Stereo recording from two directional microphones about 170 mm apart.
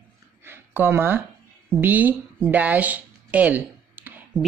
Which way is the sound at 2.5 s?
10° right (ahead or behind).